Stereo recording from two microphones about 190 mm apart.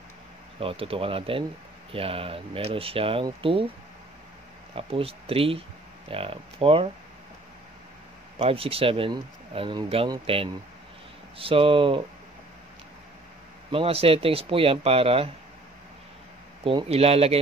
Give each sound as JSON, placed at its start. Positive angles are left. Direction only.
{"t": 0.6, "sound": "speech", "side_deg": -30}
{"t": 4.7, "sound": "speech", "side_deg": -30}
{"t": 8.4, "sound": "speech", "side_deg": -30}
{"t": 13.7, "sound": "speech", "side_deg": -30}
{"t": 16.6, "sound": "speech", "side_deg": -30}